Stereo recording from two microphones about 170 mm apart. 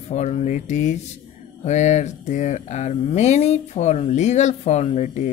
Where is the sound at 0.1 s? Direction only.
40° left (ahead or behind).